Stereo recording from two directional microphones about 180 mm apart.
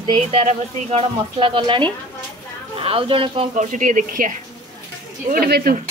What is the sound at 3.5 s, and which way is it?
Speech, 45° right (ahead or behind).